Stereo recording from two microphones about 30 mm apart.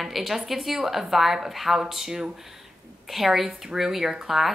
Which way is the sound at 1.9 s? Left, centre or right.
Centre.